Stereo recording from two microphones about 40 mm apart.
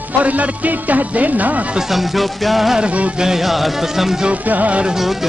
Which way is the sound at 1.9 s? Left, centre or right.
Centre.